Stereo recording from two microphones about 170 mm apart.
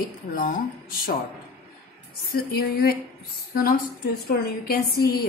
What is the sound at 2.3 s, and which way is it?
A woman's voice, 65° left (ahead or behind).